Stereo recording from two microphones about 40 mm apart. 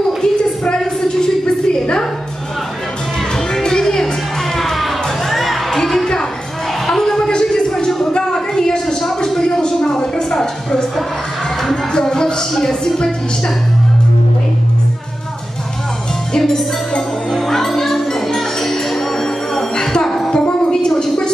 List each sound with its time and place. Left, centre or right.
0.2 s a sound: left
3.5 s music: centre
4.6 s music: centre
6.9 s a sound: centre
11.9 s music: centre
16.3 s music: centre